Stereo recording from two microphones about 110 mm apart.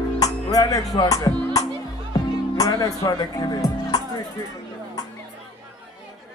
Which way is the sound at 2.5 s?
35° left (ahead or behind).